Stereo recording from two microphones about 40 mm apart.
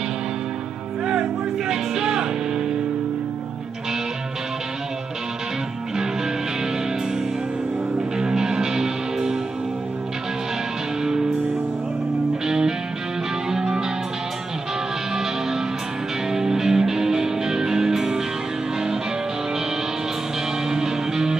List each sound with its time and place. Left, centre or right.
1.7 s music: centre
8.2 s music: centre
12.4 s music: centre
16.3 s music: centre
20.7 s music: centre